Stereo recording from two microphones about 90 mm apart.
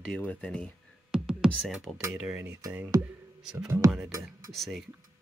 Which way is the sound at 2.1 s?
10° right (ahead or behind).